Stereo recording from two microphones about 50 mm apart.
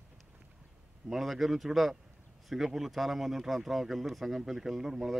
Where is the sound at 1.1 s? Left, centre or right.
Centre.